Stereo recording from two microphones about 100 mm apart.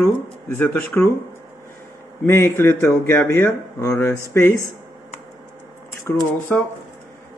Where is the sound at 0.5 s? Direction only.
20° left (ahead or behind).